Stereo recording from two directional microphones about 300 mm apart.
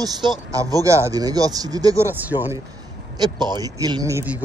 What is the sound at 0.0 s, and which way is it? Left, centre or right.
Speech, centre.